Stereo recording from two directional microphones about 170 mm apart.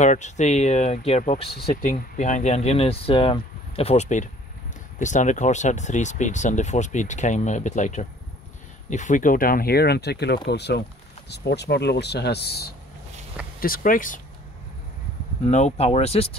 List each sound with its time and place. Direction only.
0.0 s speech: 45° left (ahead or behind); by 12.7 s 70° left (ahead or behind)
13.6 s speech: 55° left (ahead or behind)
15.4 s speech: 40° left (ahead or behind)